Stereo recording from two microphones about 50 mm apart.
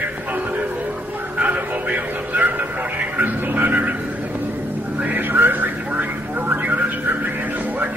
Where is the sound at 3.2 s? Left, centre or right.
Right.